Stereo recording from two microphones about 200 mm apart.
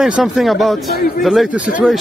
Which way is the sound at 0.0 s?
Centre (ahead or behind).